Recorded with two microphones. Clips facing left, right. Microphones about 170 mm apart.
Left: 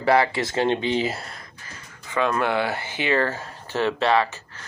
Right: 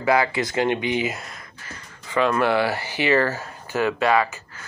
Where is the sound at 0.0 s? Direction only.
30° left (ahead or behind).